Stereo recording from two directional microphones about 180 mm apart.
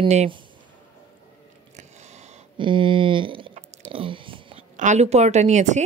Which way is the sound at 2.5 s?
25° right (ahead or behind).